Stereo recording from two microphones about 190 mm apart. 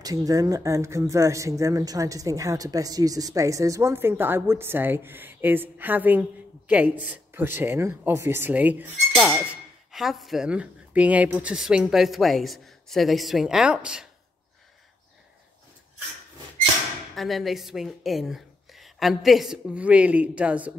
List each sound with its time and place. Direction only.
0.0 s speech: 20° right (ahead or behind)
17.1 s speech: centre (ahead or behind)